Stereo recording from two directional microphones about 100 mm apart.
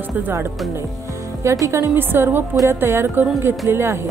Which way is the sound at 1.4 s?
30° right (ahead or behind).